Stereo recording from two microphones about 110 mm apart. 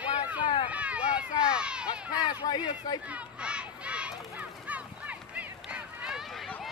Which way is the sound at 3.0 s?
10° right (ahead or behind).